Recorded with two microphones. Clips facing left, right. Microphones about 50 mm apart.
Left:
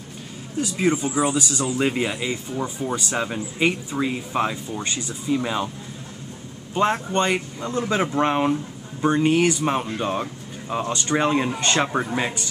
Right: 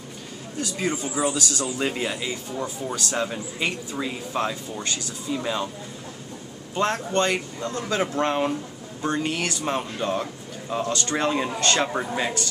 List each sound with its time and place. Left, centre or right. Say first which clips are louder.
0.6 s speech: left 5 dB; centre
6.7 s speech: left 3 dB; centre